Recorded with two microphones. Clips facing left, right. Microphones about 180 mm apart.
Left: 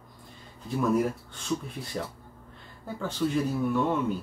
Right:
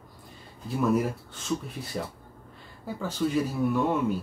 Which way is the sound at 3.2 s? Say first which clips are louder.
Right 1 dB; 5° right (ahead or behind).